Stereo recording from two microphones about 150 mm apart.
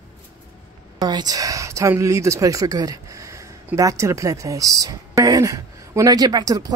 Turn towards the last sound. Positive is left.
turn(degrees=-25)  # may be behind; listen again after turning